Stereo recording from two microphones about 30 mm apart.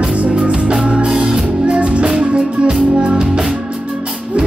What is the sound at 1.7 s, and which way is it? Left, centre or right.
Music, right.